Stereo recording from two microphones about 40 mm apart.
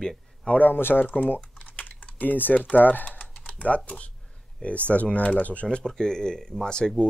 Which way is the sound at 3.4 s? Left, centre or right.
Left.